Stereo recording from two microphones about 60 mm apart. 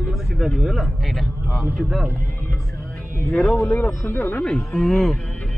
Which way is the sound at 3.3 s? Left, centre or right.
Centre.